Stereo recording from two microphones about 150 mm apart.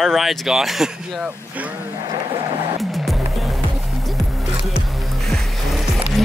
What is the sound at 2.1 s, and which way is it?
Vehicle, 25° right (ahead or behind).